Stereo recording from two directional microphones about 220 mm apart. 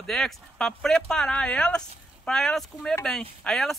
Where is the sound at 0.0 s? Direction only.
5° left (ahead or behind).